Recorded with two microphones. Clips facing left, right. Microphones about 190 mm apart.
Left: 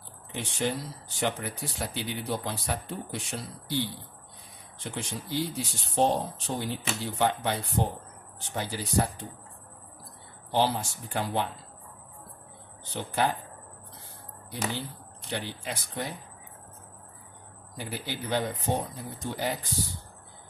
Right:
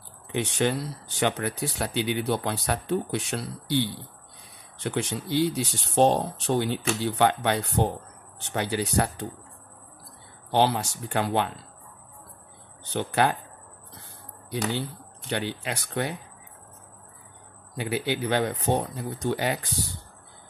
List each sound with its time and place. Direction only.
0.3 s speech: 75° right (ahead or behind)
10.5 s speech: 70° right (ahead or behind)
12.9 s speech: 75° right (ahead or behind)
14.8 s speech: 70° right (ahead or behind)
17.7 s speech: 75° right (ahead or behind)